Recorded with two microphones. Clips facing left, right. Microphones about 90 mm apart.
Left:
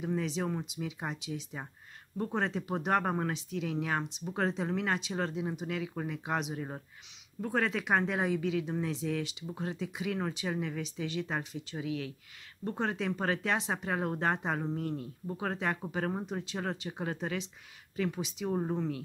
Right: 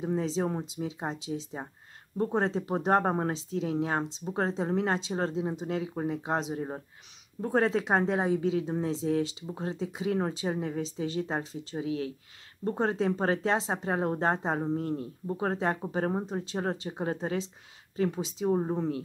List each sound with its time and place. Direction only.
0.0 s speech: 30° right (ahead or behind)